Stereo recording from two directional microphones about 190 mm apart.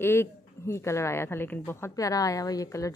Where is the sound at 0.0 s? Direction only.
15° left (ahead or behind).